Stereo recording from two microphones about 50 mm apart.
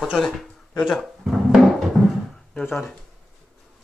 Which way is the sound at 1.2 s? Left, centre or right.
Centre.